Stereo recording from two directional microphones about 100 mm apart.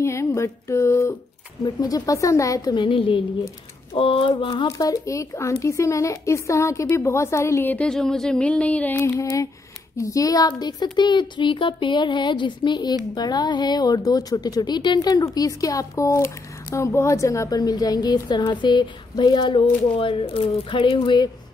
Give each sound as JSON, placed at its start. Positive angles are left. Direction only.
{"t": 0.0, "sound": "a sound", "side_deg": 30}
{"t": 1.6, "sound": "speech", "side_deg": 40}
{"t": 2.7, "sound": "music", "side_deg": 55}
{"t": 3.9, "sound": "speech", "side_deg": 70}
{"t": 4.3, "sound": "speech", "side_deg": 55}
{"t": 4.6, "sound": "speech", "side_deg": 35}
{"t": 7.7, "sound": "speech", "side_deg": 10}
{"t": 9.0, "sound": "speech", "side_deg": 30}
{"t": 10.6, "sound": "speech", "side_deg": 45}